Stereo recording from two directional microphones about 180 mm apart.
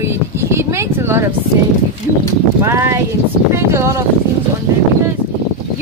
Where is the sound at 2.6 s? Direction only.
15° right (ahead or behind).